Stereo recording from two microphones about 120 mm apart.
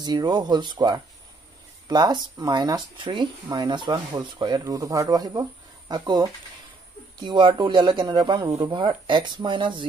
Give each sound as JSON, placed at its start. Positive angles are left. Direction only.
{"t": 0.0, "sound": "speech", "side_deg": -35}